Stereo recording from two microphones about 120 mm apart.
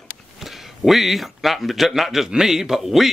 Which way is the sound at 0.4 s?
Centre (ahead or behind).